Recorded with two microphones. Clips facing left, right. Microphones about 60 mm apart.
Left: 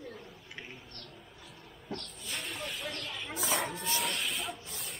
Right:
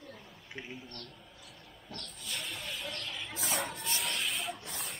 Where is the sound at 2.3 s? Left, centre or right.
Centre.